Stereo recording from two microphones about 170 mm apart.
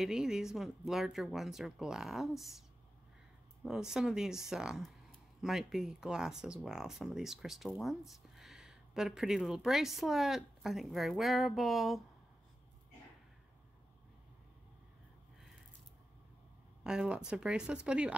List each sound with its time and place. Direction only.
0.0 s speech: 5° right (ahead or behind)
3.6 s speech: 5° right (ahead or behind)
16.8 s speech: 5° right (ahead or behind)